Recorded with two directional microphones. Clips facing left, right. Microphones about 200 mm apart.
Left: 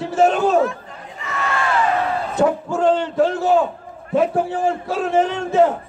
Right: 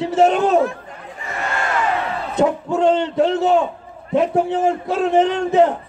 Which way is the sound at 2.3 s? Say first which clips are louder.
Right 2 dB; 20° right (ahead or behind).